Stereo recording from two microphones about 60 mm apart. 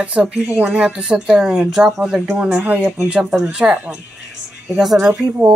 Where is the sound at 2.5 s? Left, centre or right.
Right.